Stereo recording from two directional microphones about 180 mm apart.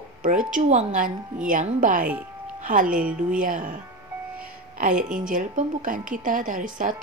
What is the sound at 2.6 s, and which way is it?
Music, 45° right (ahead or behind).